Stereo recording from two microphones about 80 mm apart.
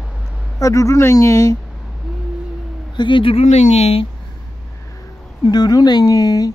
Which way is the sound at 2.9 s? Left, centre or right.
Left.